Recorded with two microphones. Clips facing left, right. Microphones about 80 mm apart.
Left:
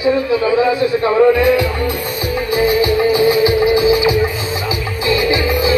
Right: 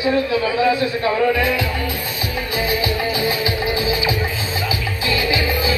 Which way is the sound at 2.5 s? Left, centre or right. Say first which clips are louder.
Left 8 dB; left.